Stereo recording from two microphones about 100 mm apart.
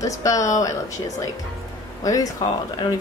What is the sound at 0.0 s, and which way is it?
A woman's voice, 35° left (ahead or behind).